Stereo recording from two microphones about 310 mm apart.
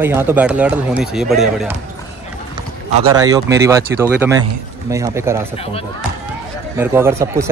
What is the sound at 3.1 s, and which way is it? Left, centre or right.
Speech, centre.